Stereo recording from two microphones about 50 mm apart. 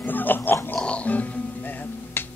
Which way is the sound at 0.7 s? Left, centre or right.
Left.